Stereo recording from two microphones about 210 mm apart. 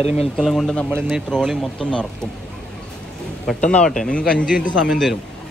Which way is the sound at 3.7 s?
5° left (ahead or behind).